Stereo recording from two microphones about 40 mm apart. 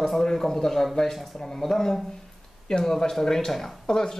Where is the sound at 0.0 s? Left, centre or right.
Centre.